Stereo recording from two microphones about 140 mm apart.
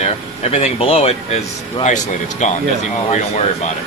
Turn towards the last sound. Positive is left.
turn(degrees=55)  # may be behind; listen again after turning